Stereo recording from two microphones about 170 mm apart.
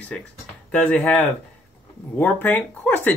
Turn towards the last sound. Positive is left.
turn(degrees=10)  # may be behind; listen again after turning